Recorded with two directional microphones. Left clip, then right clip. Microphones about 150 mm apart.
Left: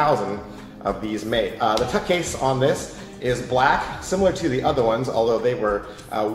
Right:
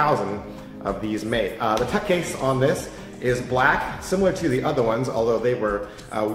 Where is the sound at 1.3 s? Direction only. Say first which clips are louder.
Left 2 dB; 25° right (ahead or behind).